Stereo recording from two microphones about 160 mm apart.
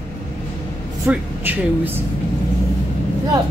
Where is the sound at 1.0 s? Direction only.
10° right (ahead or behind).